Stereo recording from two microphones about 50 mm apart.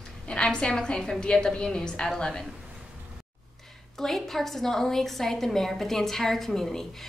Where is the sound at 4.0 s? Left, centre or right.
Centre.